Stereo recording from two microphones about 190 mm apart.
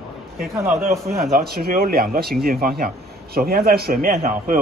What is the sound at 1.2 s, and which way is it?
A man's voice, 50° right (ahead or behind).